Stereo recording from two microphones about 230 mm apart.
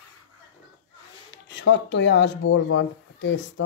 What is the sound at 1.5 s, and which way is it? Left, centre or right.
Speech, left.